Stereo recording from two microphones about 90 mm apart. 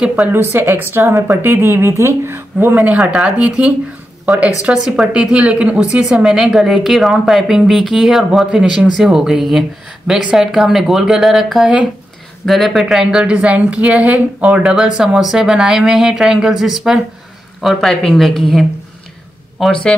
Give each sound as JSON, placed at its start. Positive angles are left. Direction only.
{"t": 0.0, "sound": "speech", "side_deg": -10}
{"t": 0.3, "sound": "speech", "side_deg": -25}
{"t": 2.9, "sound": "a woman's voice", "side_deg": -10}